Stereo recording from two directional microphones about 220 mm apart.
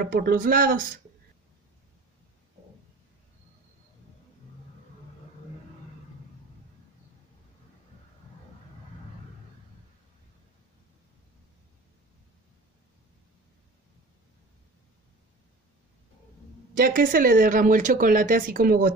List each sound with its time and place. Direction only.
0.0 s speech: 40° right (ahead or behind)
16.7 s speech: 40° right (ahead or behind)